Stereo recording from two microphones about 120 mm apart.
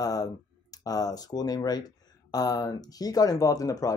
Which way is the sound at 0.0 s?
30° left (ahead or behind).